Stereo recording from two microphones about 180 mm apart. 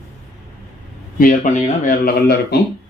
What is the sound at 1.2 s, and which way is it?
Speech, 45° left (ahead or behind).